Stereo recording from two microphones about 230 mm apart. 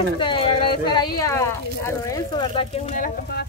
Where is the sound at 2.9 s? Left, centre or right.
Left.